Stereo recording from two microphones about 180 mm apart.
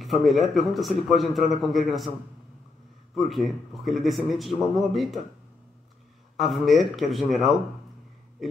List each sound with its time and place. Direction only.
0.0 s a man's voice: centre (ahead or behind)
3.2 s a man's voice: centre (ahead or behind)
6.3 s a man's voice: centre (ahead or behind)
8.4 s a sound: centre (ahead or behind)